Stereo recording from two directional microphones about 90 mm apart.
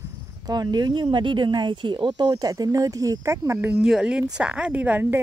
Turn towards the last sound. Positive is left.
turn(degrees=-20)  # may be behind; listen again after turning